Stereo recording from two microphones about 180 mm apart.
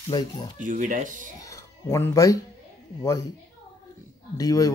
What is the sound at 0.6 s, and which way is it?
Speech, 45° right (ahead or behind).